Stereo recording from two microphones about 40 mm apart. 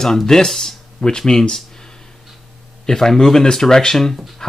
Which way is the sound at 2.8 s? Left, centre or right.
Centre.